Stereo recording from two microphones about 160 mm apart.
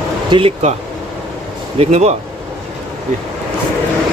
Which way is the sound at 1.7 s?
45° right (ahead or behind).